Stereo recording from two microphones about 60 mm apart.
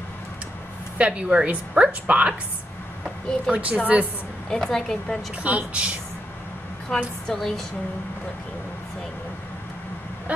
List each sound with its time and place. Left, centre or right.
0.9 s a woman's voice: right
3.4 s a woman's voice: right
4.5 s a woman's voice: centre
5.4 s a woman's voice: right
6.9 s a woman's voice: centre